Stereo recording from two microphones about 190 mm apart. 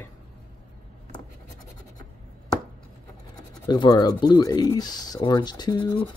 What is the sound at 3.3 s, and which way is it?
Speech, 20° left (ahead or behind).